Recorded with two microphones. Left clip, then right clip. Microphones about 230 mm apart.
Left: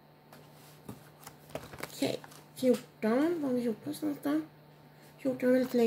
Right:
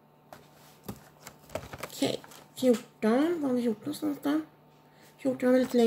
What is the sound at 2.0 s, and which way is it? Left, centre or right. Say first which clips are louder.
Speech: right 3 dB; centre.